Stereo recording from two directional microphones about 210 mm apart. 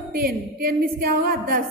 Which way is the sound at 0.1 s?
45° right (ahead or behind).